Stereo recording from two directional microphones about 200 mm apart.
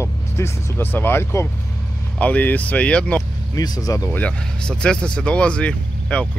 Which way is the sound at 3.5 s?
20° left (ahead or behind).